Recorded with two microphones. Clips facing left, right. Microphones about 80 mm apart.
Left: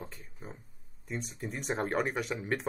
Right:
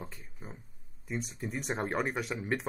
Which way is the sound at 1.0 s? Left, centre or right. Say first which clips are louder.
Right 1 dB; centre.